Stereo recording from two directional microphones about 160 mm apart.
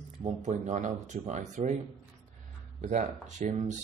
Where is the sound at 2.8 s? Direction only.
50° right (ahead or behind).